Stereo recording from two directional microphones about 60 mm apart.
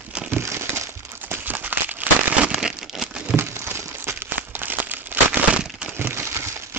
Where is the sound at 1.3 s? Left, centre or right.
Right.